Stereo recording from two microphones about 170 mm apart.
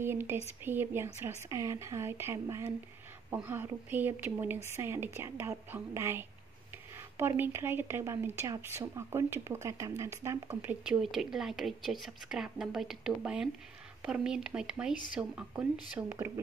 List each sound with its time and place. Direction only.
0.0 s speech: 15° right (ahead or behind)